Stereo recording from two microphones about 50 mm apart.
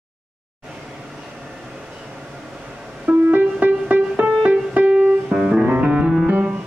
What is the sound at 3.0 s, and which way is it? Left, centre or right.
Music, right.